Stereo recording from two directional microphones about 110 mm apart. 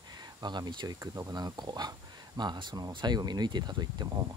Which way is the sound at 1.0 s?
30° right (ahead or behind).